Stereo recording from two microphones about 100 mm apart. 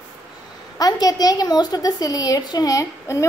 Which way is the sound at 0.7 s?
40° left (ahead or behind).